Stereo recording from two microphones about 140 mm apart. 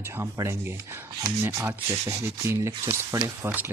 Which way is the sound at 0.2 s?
20° right (ahead or behind).